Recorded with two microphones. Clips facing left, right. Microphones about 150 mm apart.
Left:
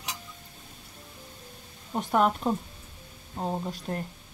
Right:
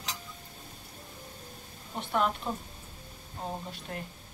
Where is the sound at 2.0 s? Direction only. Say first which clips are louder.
Left 5 dB; 45° left (ahead or behind).